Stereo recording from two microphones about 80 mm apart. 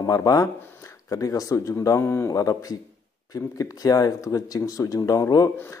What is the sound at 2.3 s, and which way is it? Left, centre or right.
Speech, left.